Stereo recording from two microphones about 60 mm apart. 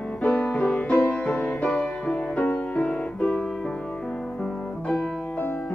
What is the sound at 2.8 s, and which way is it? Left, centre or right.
Music, centre.